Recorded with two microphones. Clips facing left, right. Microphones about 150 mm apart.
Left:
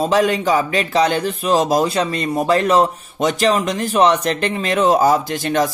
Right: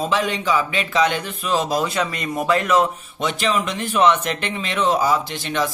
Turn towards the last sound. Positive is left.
turn(degrees=45)  # may be behind; listen again after turning